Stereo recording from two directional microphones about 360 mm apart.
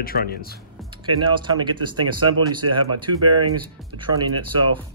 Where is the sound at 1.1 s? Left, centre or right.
Centre.